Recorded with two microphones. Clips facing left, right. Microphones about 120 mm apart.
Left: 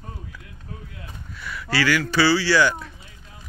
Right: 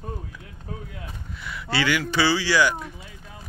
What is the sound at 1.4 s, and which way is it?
Speech, 20° right (ahead or behind).